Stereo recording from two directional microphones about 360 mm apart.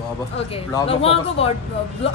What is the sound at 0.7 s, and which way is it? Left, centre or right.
Speech, centre.